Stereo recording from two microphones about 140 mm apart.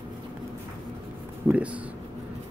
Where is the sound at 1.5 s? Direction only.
10° right (ahead or behind).